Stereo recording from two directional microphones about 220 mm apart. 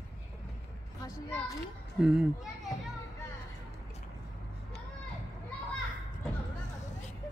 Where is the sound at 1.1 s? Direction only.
15° left (ahead or behind).